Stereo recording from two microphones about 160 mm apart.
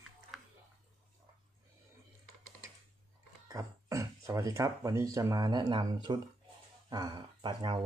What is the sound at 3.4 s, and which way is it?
Speech, 20° right (ahead or behind).